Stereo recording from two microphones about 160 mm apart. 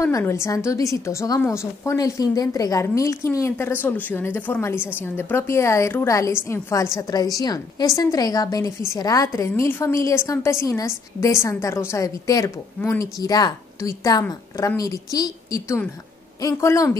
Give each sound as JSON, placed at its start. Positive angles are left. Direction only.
{"t": 0.0, "sound": "a woman's voice", "side_deg": 15}